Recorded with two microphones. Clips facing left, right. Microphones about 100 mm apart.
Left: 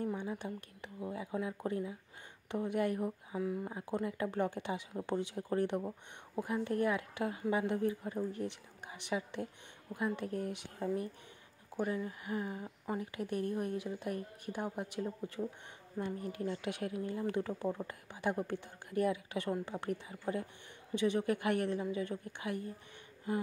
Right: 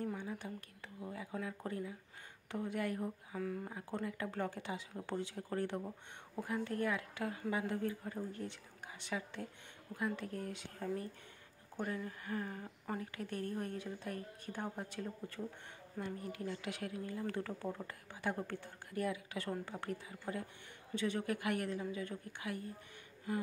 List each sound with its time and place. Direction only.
0.0 s speech: 20° left (ahead or behind)
11.7 s speech: 10° left (ahead or behind)
16.4 s speech: 25° left (ahead or behind)